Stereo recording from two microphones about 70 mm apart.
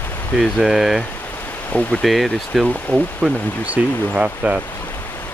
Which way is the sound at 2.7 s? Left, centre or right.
Centre.